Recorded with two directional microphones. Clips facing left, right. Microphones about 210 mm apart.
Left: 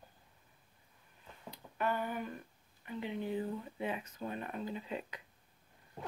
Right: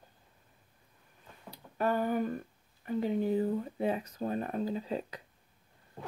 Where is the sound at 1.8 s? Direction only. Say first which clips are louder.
Right 7 dB; 40° right (ahead or behind).